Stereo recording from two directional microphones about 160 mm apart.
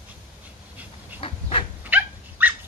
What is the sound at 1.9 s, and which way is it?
Dog, 10° right (ahead or behind).